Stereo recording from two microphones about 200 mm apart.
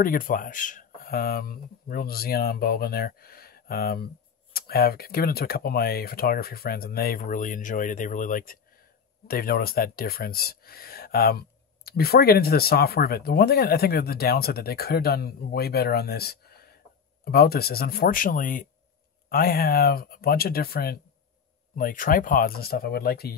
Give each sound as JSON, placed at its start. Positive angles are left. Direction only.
{"t": 0.0, "sound": "speech", "side_deg": 45}